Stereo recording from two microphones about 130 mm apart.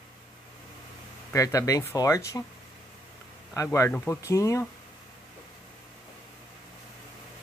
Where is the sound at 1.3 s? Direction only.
25° left (ahead or behind).